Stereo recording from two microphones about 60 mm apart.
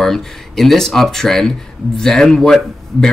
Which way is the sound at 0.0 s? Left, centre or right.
Centre.